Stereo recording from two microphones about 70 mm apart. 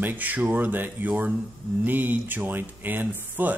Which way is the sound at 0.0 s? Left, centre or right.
Right.